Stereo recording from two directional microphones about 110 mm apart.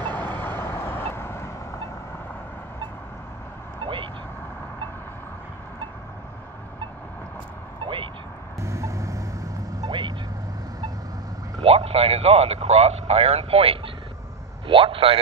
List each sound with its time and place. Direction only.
0.0 s vehicle: 15° left (ahead or behind)
3.8 s vehicle: 50° right (ahead or behind)
7.8 s vehicle: 50° right (ahead or behind)
8.5 s vehicle: 25° right (ahead or behind)
9.8 s vehicle: 50° right (ahead or behind)
11.6 s speech: 65° right (ahead or behind)